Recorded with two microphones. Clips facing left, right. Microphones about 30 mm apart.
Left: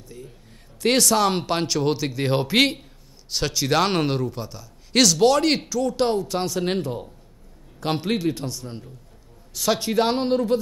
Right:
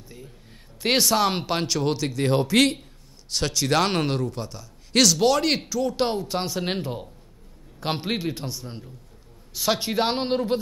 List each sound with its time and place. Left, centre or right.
0.8 s a man's voice: centre
3.3 s a man's voice: centre; by 10.6 s right